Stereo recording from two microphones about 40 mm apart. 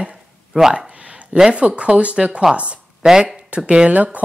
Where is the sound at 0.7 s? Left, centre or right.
Right.